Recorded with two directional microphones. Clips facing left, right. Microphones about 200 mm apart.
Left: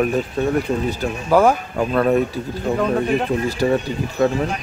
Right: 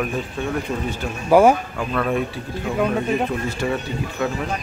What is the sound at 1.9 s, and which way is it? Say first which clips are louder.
Speech: left 5 dB; 40° left (ahead or behind).